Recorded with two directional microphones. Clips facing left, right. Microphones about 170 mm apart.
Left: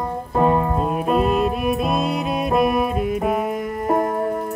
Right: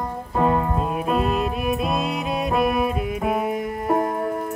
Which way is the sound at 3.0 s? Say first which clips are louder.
Left 2 dB; 45° left (ahead or behind).